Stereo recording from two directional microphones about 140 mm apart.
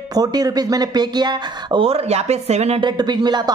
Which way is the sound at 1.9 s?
50° right (ahead or behind).